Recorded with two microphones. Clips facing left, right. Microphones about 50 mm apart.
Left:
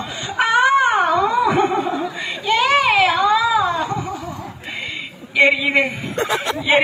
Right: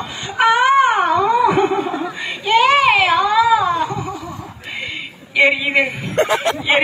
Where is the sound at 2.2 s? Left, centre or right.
Centre.